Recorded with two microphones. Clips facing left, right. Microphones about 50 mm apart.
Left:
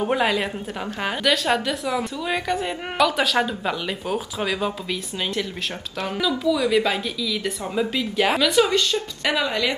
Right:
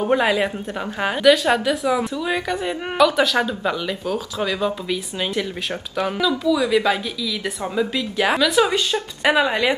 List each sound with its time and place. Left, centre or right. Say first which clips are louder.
0.0 s speech: right 3 dB; centre
5.2 s speech: even; centre
9.2 s speech: right 6 dB; right